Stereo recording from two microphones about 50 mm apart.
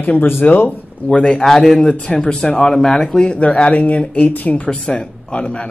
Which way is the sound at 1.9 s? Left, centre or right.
Centre.